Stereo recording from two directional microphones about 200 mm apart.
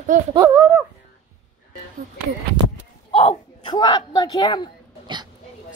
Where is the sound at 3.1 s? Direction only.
25° left (ahead or behind).